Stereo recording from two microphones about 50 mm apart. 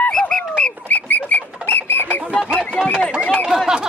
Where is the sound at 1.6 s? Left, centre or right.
Left.